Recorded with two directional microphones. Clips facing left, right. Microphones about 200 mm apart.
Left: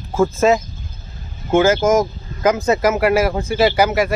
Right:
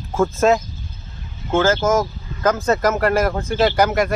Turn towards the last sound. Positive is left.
turn(degrees=5)  # may be behind; listen again after turning